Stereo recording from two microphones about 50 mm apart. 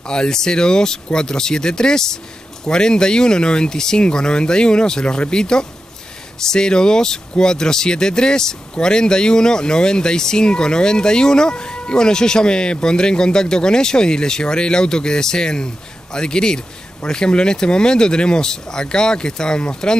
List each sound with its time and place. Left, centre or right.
0.0 s speech: centre